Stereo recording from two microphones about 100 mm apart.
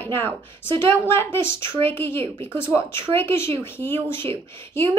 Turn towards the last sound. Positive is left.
turn(degrees=25)  # may be behind; listen again after turning